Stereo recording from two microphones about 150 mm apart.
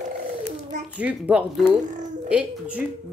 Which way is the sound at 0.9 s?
10° right (ahead or behind).